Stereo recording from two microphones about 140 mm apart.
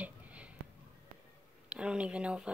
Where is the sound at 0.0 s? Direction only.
10° right (ahead or behind).